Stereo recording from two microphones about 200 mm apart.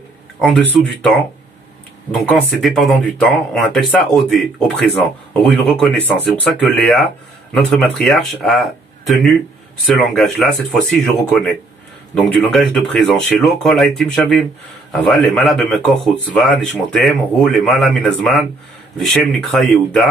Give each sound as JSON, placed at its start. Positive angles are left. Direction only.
{"t": 0.4, "sound": "speech", "side_deg": 5}
{"t": 2.1, "sound": "speech", "side_deg": 0}
{"t": 7.5, "sound": "speech", "side_deg": 5}